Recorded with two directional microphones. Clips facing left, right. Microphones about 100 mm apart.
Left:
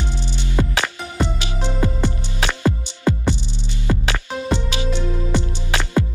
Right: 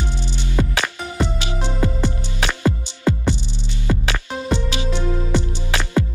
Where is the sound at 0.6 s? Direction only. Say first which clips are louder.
Even; 20° left (ahead or behind).